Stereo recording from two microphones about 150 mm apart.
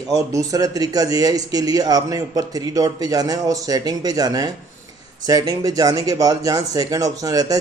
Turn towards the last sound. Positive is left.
turn(degrees=-25)  # may be behind; listen again after turning